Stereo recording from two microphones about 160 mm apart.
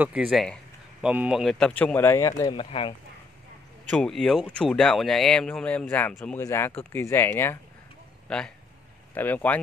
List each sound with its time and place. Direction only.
0.0 s speech: 5° right (ahead or behind); by 2.5 s 20° left (ahead or behind)
2.5 s speech: 35° left (ahead or behind)
3.9 s speech: 5° left (ahead or behind)